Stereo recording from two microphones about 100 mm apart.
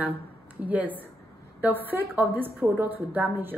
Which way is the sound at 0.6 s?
15° right (ahead or behind).